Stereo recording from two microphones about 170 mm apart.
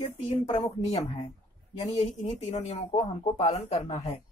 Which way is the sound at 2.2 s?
40° left (ahead or behind).